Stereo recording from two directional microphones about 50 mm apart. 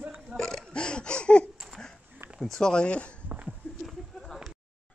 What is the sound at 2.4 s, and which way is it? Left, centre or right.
Speech, centre.